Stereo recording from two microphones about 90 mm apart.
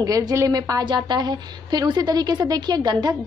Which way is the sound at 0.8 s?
55° right (ahead or behind).